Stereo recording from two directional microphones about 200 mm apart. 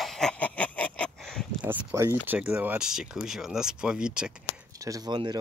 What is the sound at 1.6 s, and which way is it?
Speech, 15° right (ahead or behind).